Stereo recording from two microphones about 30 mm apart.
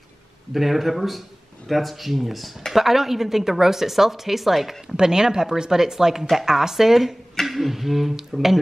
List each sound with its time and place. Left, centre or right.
0.5 s speech: centre
4.8 s speech: right